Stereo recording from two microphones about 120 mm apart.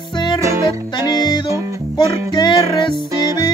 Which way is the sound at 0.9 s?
35° left (ahead or behind).